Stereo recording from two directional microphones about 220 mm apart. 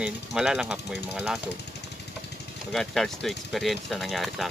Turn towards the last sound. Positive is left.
turn(degrees=0)  # may be behind; listen again after turning